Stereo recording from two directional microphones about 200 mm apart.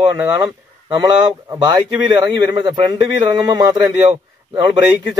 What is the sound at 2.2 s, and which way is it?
A man's voice, 20° right (ahead or behind).